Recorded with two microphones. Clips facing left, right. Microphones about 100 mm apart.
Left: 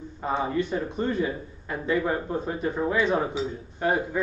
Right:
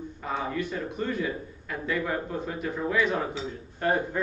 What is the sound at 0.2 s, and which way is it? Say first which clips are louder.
A man's voice: left 5 dB; 30° left (ahead or behind).